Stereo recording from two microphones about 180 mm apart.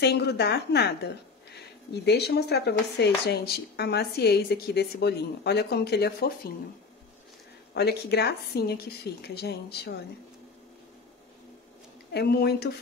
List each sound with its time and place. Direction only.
0.0 s a woman's voice: 65° left (ahead or behind)
7.7 s speech: 65° left (ahead or behind)
12.1 s speech: 60° left (ahead or behind)